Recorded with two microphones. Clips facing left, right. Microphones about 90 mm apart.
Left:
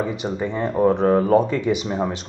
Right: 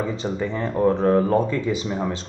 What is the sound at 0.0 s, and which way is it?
Speech, 15° left (ahead or behind).